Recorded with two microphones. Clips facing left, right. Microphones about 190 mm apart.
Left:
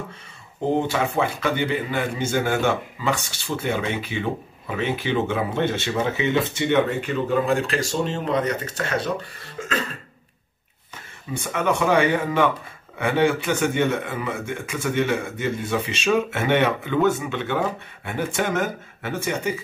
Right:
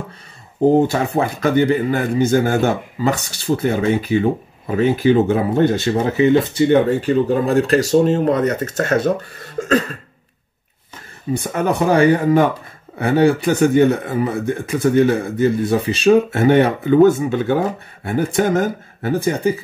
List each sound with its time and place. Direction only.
0.7 s speech: 40° right (ahead or behind)
11.3 s speech: 40° right (ahead or behind)